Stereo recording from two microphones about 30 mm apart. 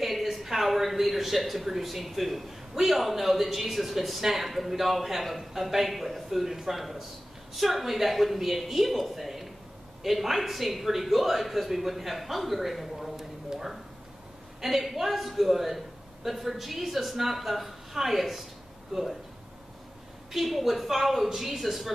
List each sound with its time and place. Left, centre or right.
0.0 s speech: centre
14.6 s speech: centre
18.9 s speech: centre
20.3 s speech: centre